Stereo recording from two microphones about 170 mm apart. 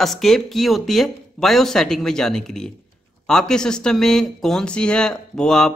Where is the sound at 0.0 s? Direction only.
Centre (ahead or behind).